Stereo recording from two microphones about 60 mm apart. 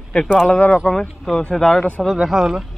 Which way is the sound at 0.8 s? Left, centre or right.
Centre.